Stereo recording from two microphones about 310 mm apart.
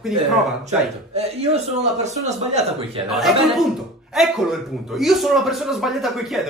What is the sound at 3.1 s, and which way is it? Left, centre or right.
Speech, centre.